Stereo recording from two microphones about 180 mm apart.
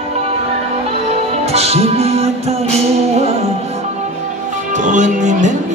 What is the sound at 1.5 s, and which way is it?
Music, 35° right (ahead or behind).